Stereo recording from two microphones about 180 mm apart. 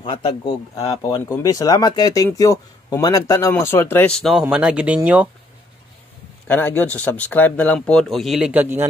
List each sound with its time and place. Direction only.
0.0 s speech: 25° left (ahead or behind); by 5.3 s 10° right (ahead or behind)
6.4 s speech: 10° left (ahead or behind); by 8.8 s 10° right (ahead or behind)